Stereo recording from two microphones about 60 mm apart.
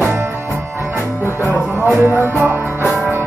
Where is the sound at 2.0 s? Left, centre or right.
Right.